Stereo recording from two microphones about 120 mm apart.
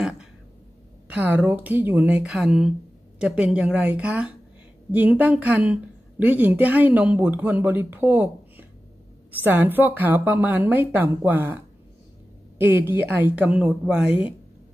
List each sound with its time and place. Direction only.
1.0 s a woman's voice: 15° right (ahead or behind)